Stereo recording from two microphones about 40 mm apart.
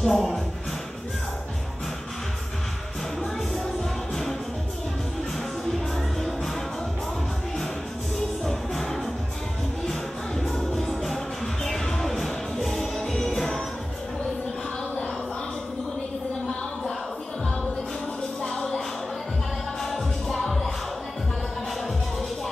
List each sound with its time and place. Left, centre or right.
0.0 s speech: centre
3.2 s music: centre
5.9 s music: centre
8.5 s music: centre
10.5 s music: centre
18.4 s music: centre
19.8 s music: centre